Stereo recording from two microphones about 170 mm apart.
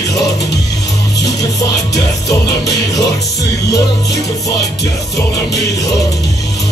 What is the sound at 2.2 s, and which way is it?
Music, 20° left (ahead or behind).